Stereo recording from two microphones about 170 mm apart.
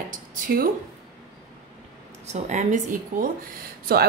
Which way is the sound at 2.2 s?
40° right (ahead or behind).